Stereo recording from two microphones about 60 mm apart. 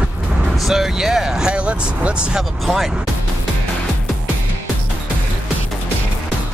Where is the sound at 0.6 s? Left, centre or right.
Centre.